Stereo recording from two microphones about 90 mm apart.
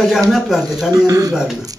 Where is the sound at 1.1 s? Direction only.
40° right (ahead or behind).